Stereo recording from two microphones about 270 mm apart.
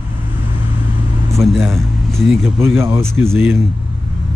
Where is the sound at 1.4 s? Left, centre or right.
Centre.